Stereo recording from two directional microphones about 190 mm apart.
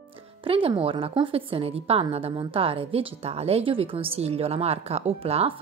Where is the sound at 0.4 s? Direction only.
30° right (ahead or behind).